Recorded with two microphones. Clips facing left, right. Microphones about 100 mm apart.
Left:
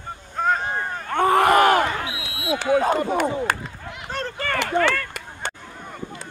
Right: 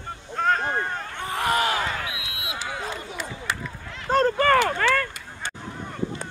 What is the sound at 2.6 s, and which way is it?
Speech, 55° left (ahead or behind).